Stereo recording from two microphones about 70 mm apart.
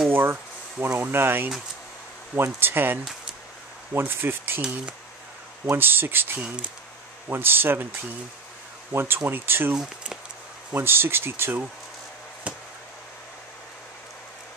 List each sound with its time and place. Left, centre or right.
0.1 s speech: right
4.6 s speech: centre
5.7 s speech: right
6.4 s speech: centre
7.2 s speech: right
8.9 s speech: right
12.5 s a sound: centre